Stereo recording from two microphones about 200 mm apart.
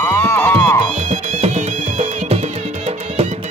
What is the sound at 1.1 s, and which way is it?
Music, 35° right (ahead or behind).